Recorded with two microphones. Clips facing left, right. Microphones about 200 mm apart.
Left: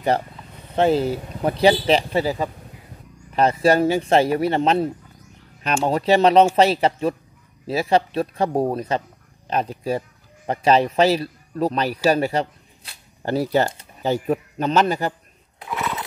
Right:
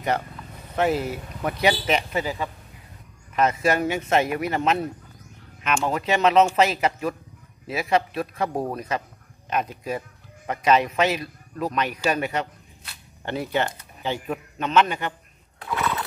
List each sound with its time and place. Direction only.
0.7 s speech: 30° left (ahead or behind)
15.8 s horse: 15° left (ahead or behind)